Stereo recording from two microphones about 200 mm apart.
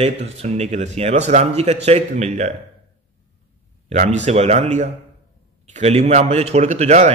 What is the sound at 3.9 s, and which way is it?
Speech, 40° right (ahead or behind).